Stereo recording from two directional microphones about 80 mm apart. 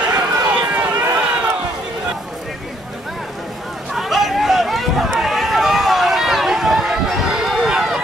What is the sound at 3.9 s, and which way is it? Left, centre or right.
Run, centre.